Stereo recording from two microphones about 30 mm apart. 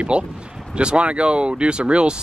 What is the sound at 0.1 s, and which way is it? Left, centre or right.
Speech, right.